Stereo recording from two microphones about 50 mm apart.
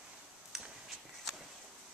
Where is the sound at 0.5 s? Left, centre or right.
Centre.